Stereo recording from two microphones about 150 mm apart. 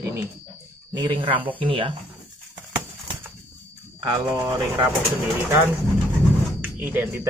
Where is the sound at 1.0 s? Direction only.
35° right (ahead or behind).